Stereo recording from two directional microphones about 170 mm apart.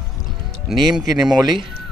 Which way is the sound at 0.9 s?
Centre (ahead or behind).